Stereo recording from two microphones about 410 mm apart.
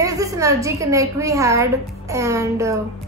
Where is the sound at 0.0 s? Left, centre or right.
Centre.